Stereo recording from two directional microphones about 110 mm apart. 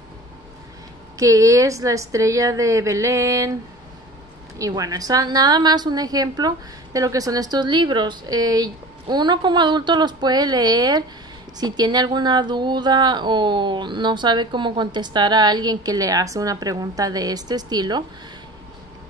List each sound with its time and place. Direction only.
1.1 s a woman's voice: 30° right (ahead or behind)
4.6 s a woman's voice: 30° right (ahead or behind)